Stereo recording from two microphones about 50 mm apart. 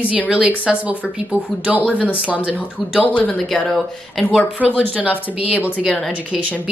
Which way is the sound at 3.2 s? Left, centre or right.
Centre.